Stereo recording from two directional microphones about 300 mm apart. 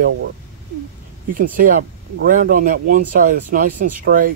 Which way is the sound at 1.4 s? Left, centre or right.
Right.